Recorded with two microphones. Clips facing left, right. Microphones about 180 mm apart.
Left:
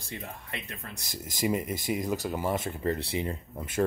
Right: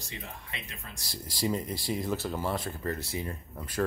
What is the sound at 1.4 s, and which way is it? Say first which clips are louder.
Speech: left 2 dB; 10° left (ahead or behind).